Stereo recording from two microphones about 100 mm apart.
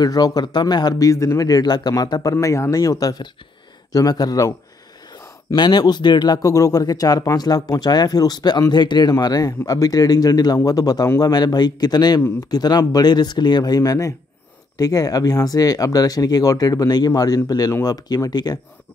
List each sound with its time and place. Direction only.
0.0 s speech: 40° left (ahead or behind)
2.3 s speech: 30° left (ahead or behind)
5.5 s speech: 45° left (ahead or behind)